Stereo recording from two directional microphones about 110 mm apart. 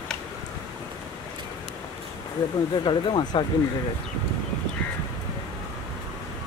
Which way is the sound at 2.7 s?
45° left (ahead or behind).